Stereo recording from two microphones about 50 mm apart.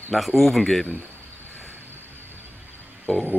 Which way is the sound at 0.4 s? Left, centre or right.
Centre.